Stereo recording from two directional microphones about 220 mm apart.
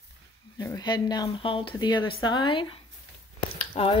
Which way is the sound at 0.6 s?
15° left (ahead or behind).